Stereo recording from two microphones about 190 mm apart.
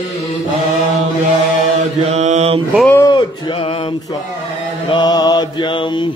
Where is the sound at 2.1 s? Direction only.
35° right (ahead or behind).